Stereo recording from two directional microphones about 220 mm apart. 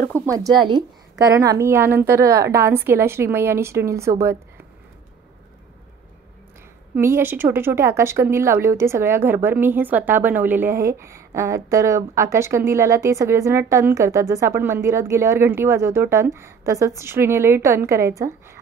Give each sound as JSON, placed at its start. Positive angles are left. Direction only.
{"t": 0.1, "sound": "speech", "side_deg": -15}
{"t": 7.0, "sound": "speech", "side_deg": -10}